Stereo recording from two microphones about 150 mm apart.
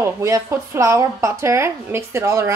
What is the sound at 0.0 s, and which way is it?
Speech, 20° right (ahead or behind).